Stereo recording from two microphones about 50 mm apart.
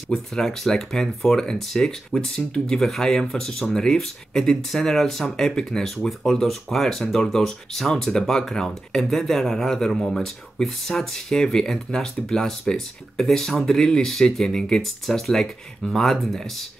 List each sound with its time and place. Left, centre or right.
0.1 s speech: centre